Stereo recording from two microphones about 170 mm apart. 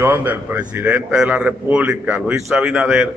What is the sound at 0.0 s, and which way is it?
A man's voice, 10° right (ahead or behind).